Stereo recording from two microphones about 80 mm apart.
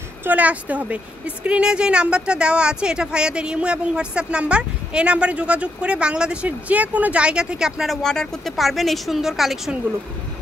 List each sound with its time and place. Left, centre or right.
0.2 s speech: centre